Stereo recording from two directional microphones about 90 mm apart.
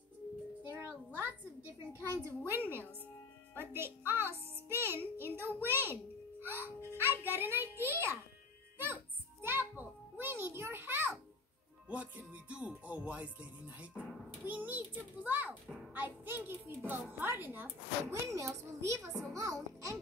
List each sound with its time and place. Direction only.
0.7 s a sound: 20° right (ahead or behind)
2.2 s a child's voice: 25° right (ahead or behind)
8.7 s music: 25° right (ahead or behind)
17.2 s a child's voice: 20° right (ahead or behind)
18.0 s a child's voice: 35° right (ahead or behind)